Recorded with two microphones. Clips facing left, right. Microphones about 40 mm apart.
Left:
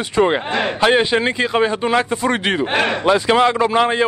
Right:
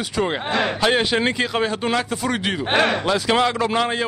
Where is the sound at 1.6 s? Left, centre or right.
Centre.